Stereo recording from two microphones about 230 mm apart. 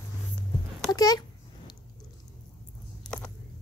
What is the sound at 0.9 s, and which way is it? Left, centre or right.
Speech, centre.